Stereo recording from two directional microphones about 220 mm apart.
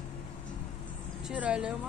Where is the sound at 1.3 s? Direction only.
5° right (ahead or behind).